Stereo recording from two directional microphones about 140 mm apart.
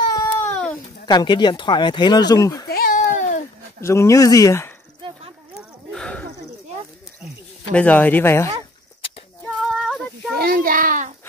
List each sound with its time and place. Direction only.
0.0 s baby cry: 25° left (ahead or behind)
0.5 s baby cry: 10° left (ahead or behind)
1.0 s speech: 30° left (ahead or behind)
2.7 s babbling: 85° left
3.8 s speech: 20° left (ahead or behind)
5.6 s a sound: 5° left (ahead or behind)
7.7 s speech: 10° left (ahead or behind)
9.6 s female singing: centre (ahead or behind)
10.4 s a sound: 85° right; by 11.1 s 70° right (ahead or behind)